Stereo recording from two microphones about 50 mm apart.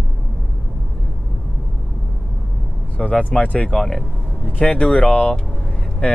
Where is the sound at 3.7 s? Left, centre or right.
Centre.